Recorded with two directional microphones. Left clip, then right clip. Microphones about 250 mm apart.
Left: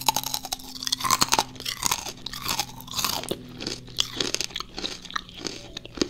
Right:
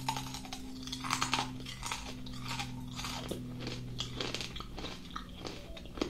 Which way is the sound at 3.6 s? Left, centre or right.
Left.